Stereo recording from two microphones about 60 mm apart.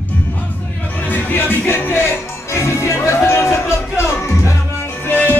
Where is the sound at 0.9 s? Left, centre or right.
Left.